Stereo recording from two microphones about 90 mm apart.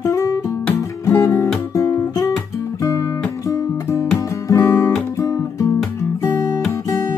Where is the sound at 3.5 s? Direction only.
35° left (ahead or behind).